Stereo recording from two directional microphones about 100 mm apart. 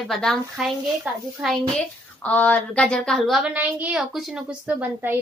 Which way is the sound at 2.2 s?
15° left (ahead or behind).